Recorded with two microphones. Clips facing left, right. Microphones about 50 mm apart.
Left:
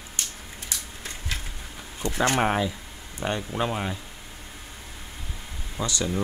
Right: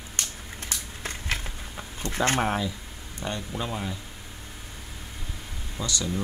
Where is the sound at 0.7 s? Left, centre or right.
Right.